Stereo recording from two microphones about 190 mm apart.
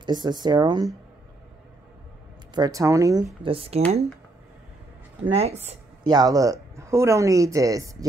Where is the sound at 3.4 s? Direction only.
30° right (ahead or behind).